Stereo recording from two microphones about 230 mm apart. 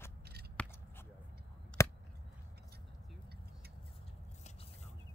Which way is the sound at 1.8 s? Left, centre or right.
Centre.